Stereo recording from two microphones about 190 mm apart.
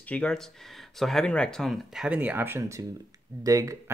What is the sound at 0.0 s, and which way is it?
Speech, 5° left (ahead or behind).